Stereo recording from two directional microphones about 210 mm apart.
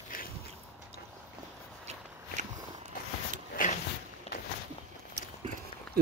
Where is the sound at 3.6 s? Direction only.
40° left (ahead or behind).